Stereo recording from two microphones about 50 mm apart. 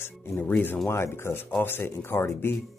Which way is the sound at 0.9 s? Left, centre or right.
Left.